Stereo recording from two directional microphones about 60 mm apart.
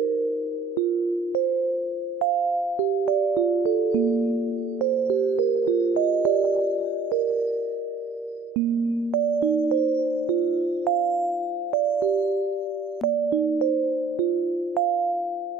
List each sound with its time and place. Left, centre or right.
6.0 s music: right
11.1 s music: centre